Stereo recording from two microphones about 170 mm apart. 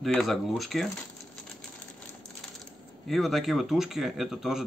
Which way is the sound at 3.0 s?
Centre (ahead or behind).